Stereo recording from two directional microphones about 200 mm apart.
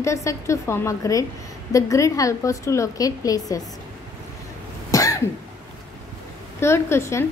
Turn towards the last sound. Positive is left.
turn(degrees=15)  # may be behind; listen again after turning